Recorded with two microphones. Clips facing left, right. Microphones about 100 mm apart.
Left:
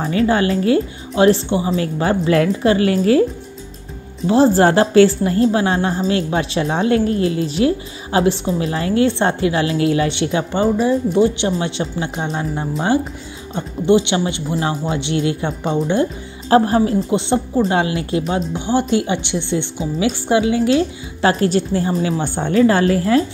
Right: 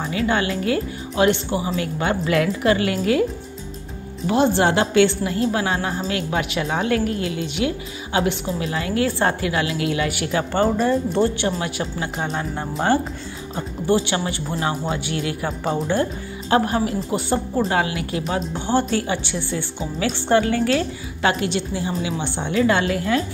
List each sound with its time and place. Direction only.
0.0 s speech: 35° left (ahead or behind)
4.3 s speech: 35° left (ahead or behind)
10.6 s a woman's voice: 10° left (ahead or behind)
16.4 s a woman's voice: 35° left (ahead or behind)
18.5 s a woman's voice: 15° left (ahead or behind)
21.2 s speech: 35° left (ahead or behind)